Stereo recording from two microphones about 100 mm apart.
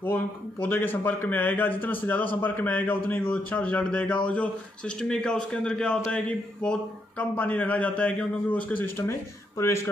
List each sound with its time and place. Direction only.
0.0 s speech: 20° left (ahead or behind)